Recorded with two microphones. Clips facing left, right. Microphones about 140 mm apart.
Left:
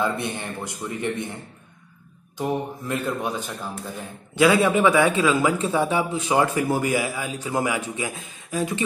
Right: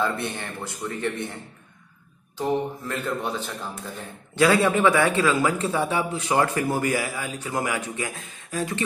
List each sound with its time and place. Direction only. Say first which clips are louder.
0.0 s a man's voice: left 1 dB; 15° left (ahead or behind)
2.9 s a man's voice: left 4 dB; 15° left (ahead or behind)